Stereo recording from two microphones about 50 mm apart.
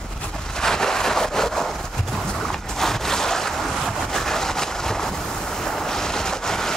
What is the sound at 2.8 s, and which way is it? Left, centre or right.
Boat, centre.